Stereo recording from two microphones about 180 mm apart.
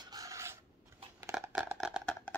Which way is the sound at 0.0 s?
20° right (ahead or behind).